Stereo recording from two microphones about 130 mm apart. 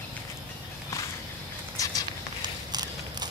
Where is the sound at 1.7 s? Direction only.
25° left (ahead or behind).